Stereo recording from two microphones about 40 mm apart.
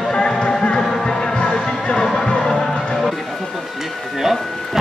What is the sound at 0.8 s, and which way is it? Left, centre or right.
Music, centre.